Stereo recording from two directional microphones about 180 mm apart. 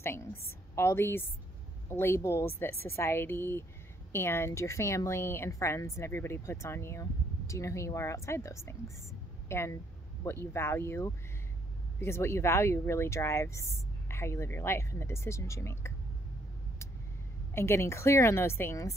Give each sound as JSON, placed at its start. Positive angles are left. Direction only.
{"t": 0.0, "sound": "a woman's voice", "side_deg": 15}
{"t": 17.6, "sound": "a woman's voice", "side_deg": 15}